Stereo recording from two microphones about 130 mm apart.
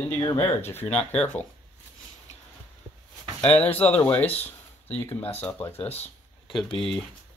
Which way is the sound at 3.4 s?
10° left (ahead or behind).